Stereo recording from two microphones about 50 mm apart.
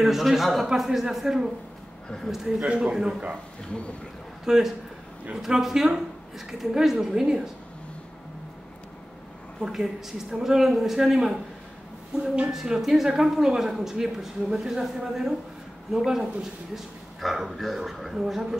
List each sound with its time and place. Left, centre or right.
0.0 s a woman's voice: centre
2.6 s a woman's voice: centre
4.5 s a woman's voice: centre
9.6 s a woman's voice: centre